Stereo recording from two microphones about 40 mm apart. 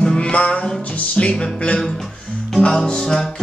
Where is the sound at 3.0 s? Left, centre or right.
Centre.